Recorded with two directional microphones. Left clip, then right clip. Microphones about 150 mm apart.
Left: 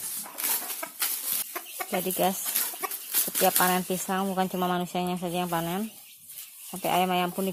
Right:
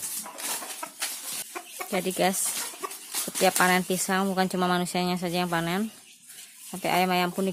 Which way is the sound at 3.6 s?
20° right (ahead or behind).